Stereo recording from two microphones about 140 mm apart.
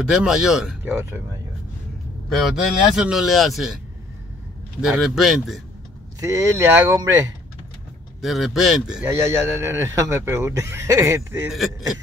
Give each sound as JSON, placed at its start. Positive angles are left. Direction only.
{"t": 0.0, "sound": "speech", "side_deg": -5}
{"t": 2.2, "sound": "speech", "side_deg": 0}
{"t": 4.8, "sound": "speech", "side_deg": -5}
{"t": 6.1, "sound": "speech", "side_deg": -20}
{"t": 8.2, "sound": "speech", "side_deg": 0}
{"t": 9.1, "sound": "speech", "side_deg": -20}
{"t": 11.4, "sound": "speech", "side_deg": 0}